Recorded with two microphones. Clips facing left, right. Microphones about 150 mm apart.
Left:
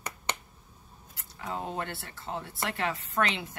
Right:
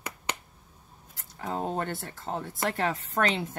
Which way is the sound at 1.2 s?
45° right (ahead or behind).